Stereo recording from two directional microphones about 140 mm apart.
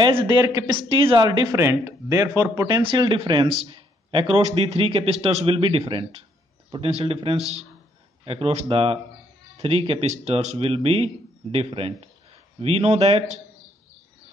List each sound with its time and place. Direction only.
0.0 s a man's voice: 35° right (ahead or behind)
1.6 s speech: 20° right (ahead or behind)
2.8 s a man's voice: 35° right (ahead or behind)